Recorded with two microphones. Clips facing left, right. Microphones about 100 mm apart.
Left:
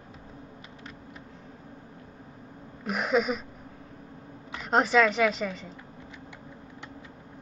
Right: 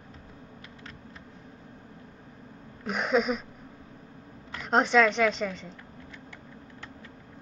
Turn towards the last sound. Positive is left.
turn(degrees=5)  # may be behind; listen again after turning